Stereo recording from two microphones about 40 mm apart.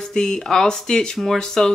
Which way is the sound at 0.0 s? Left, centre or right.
Centre.